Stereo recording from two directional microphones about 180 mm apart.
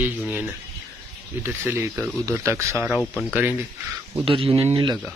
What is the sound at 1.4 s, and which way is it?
Speech, 10° right (ahead or behind).